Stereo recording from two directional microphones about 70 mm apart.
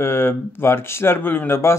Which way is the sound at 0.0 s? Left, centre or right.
Left.